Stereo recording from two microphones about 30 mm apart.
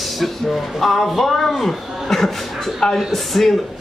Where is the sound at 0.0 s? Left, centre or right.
Centre.